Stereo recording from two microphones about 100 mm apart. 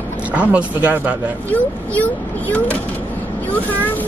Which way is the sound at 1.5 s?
15° left (ahead or behind).